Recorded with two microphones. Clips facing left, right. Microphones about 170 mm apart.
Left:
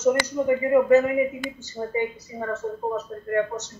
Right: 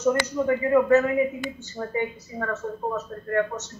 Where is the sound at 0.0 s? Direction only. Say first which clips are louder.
Left 1 dB; 15° left (ahead or behind).